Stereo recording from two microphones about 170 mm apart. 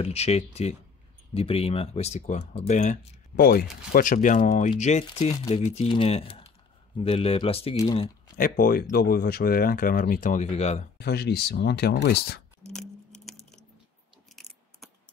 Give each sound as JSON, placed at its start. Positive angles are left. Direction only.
{"t": 0.0, "sound": "speech", "side_deg": 40}
{"t": 5.3, "sound": "speech", "side_deg": 25}
{"t": 5.6, "sound": "speech", "side_deg": 40}
{"t": 7.7, "sound": "speech", "side_deg": 20}
{"t": 8.4, "sound": "speech", "side_deg": 60}
{"t": 11.0, "sound": "speech", "side_deg": 70}
{"t": 12.7, "sound": "a sound", "side_deg": 0}